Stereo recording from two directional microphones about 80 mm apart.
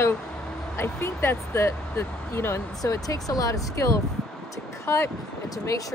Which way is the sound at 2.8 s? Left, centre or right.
Left.